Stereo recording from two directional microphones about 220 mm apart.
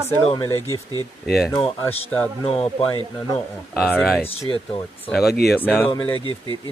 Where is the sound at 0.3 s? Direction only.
20° left (ahead or behind).